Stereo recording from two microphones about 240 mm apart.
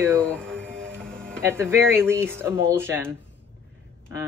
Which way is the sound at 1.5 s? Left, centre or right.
Centre.